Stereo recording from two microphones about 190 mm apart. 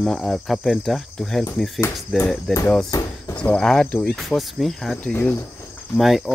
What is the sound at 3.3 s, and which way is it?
Speech, 5° left (ahead or behind).